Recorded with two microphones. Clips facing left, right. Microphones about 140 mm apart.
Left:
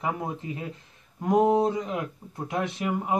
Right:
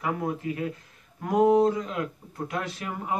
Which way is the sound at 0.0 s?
20° left (ahead or behind).